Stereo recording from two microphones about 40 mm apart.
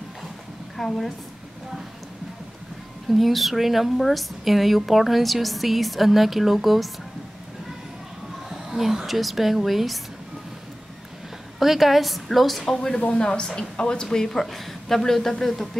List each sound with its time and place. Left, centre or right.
0.7 s speech: centre
3.1 s a woman's voice: centre
8.5 s speech: centre
11.6 s a woman's voice: centre
12.7 s a woman's voice: centre